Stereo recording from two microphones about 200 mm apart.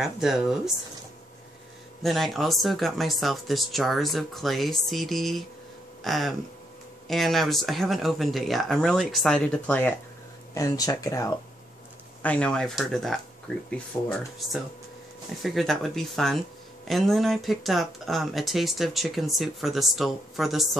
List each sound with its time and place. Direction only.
0.0 s speech: centre (ahead or behind)
2.0 s speech: centre (ahead or behind)